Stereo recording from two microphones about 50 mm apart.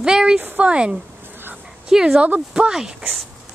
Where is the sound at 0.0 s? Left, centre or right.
Centre.